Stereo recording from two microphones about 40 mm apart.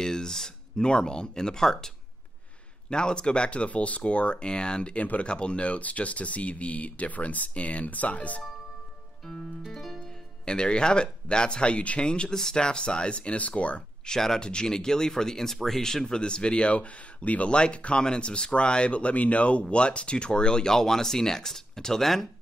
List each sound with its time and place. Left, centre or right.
0.0 s speech: centre
2.9 s speech: left
5.0 s speech: left
5.3 s speech: left
9.7 s music: centre
10.4 s speech: left
12.1 s speech: centre
14.0 s speech: centre
16.2 s speech: left
17.5 s speech: left; by 22.3 s centre